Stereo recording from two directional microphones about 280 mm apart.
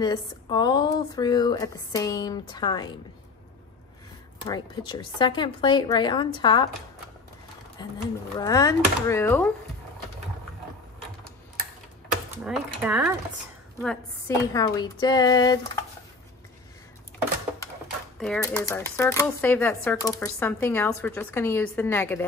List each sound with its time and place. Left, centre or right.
0.0 s speech: centre
4.5 s speech: centre
7.8 s speech: centre
12.4 s speech: centre
13.7 s speech: centre
18.2 s speech: centre